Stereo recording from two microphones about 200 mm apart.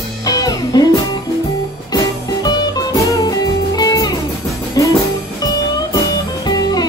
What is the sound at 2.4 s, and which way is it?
Music, 20° left (ahead or behind).